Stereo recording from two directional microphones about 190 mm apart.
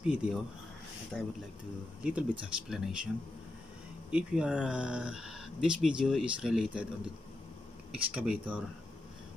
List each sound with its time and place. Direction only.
0.0 s speech: 5° right (ahead or behind)
4.1 s speech: 5° right (ahead or behind)
7.9 s speech: 5° right (ahead or behind)